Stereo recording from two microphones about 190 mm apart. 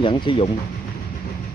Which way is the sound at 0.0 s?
25° left (ahead or behind).